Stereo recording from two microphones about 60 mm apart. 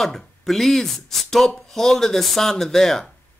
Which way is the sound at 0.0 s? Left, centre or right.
Centre.